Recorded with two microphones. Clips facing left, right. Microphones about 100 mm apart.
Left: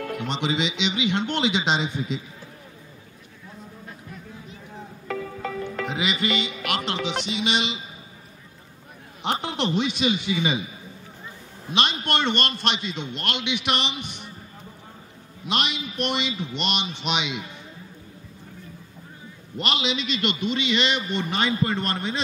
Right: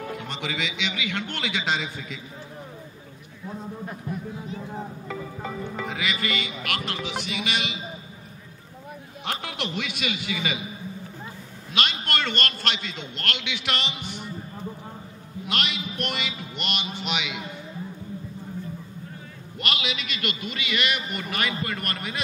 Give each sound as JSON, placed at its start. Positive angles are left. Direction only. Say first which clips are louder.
{"t": 0.2, "sound": "a man's voice", "louder": "left 5 dB", "side_deg": 20}
{"t": 5.0, "sound": "music", "louder": "left 3 dB", "side_deg": -10}
{"t": 5.9, "sound": "a man's voice", "louder": "left 4 dB", "side_deg": 20}
{"t": 9.2, "sound": "a man's voice", "louder": "left 6 dB", "side_deg": 25}
{"t": 11.7, "sound": "a man's voice", "louder": "left 3 dB", "side_deg": 25}
{"t": 15.4, "sound": "a man's voice", "louder": "left 3 dB", "side_deg": 20}
{"t": 19.5, "sound": "a man's voice", "louder": "left 4 dB", "side_deg": 25}